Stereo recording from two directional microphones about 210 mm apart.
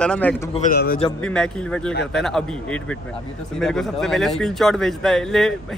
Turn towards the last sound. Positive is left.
turn(degrees=0)  # may be behind; listen again after turning